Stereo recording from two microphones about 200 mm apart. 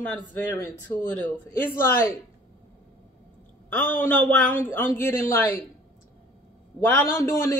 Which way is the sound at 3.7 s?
10° left (ahead or behind).